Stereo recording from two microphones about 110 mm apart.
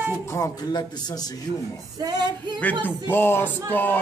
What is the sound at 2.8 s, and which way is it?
Speech, 20° left (ahead or behind).